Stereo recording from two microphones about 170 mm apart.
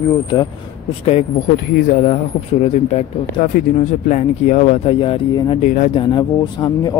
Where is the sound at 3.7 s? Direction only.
45° left (ahead or behind).